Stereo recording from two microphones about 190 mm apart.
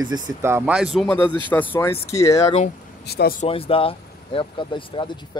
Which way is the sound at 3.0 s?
60° left (ahead or behind).